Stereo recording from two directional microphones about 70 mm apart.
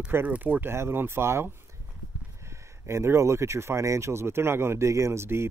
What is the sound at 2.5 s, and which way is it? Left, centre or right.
Speech, right.